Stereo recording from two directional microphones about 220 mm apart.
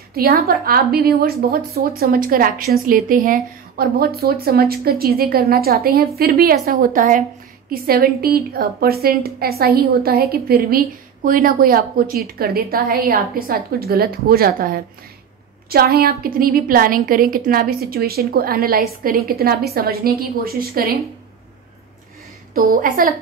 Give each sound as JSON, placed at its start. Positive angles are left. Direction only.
{"t": 0.1, "sound": "a woman's voice", "side_deg": -45}
{"t": 22.5, "sound": "a woman's voice", "side_deg": -40}